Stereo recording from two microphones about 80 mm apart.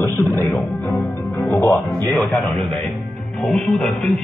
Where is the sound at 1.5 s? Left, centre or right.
Left.